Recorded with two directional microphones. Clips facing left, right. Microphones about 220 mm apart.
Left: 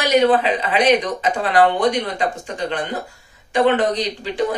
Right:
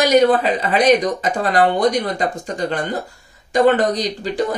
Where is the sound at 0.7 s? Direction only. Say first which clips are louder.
Right 2 dB; 40° right (ahead or behind).